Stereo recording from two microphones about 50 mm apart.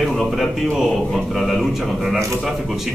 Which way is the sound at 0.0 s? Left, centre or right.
Centre.